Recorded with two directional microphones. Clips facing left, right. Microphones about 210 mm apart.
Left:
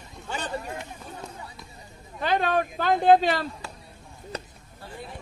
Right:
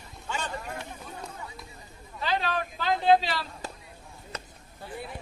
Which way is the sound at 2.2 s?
50° left (ahead or behind).